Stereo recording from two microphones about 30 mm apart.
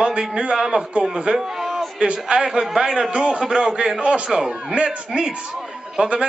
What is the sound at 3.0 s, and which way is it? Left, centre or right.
Speech, right.